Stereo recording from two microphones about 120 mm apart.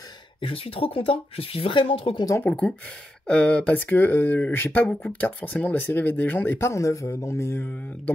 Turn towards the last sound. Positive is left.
turn(degrees=20)  # may be behind; listen again after turning